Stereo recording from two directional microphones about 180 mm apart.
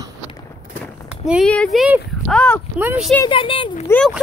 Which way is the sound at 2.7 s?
5° right (ahead or behind).